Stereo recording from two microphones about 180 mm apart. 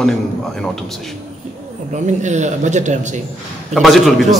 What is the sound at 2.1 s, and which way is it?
Speech, 40° right (ahead or behind).